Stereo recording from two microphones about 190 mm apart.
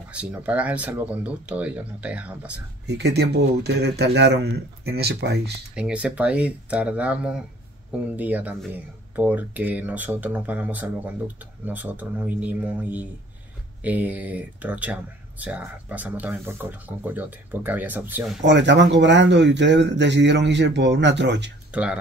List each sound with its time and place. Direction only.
0.1 s speech: 5° right (ahead or behind)
2.9 s speech: 60° right (ahead or behind)
5.8 s speech: 5° right (ahead or behind)
18.4 s speech: 70° right (ahead or behind)